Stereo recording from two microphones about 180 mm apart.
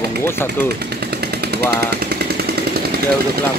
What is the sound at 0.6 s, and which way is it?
Jackhammer, 65° right (ahead or behind).